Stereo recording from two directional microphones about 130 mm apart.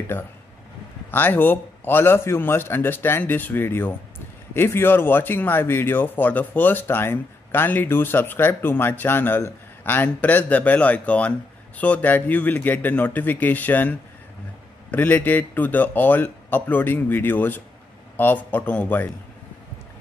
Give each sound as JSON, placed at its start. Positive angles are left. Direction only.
{"t": 1.1, "sound": "speech", "side_deg": 15}